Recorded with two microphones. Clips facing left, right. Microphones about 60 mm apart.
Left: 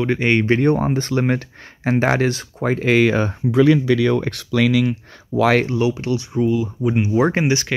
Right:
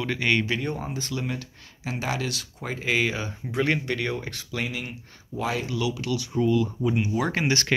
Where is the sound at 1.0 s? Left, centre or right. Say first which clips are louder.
Left 11 dB; left.